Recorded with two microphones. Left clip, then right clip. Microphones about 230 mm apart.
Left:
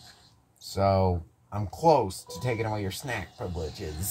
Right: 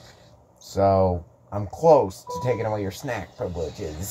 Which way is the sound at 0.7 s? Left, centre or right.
Left.